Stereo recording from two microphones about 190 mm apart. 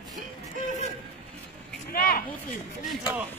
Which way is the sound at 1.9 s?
50° left (ahead or behind).